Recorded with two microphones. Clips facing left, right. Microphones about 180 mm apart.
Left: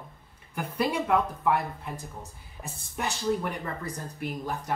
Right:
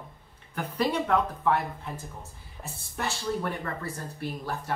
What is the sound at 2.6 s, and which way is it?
Speech, centre (ahead or behind).